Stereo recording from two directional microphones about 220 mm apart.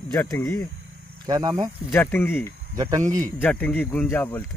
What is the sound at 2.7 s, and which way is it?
Speech, 15° right (ahead or behind).